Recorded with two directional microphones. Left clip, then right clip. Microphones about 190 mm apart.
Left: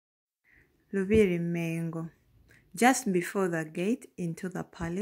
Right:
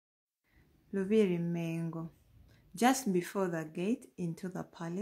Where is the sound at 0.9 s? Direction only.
25° left (ahead or behind).